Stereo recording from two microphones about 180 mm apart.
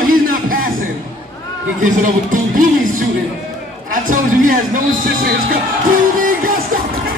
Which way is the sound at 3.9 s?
50° right (ahead or behind).